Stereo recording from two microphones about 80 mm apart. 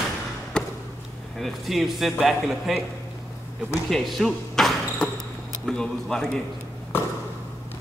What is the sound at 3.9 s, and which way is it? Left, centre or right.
Basketball bounce, centre.